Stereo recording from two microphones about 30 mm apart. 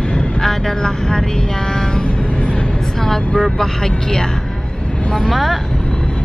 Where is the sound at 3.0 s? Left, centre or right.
Centre.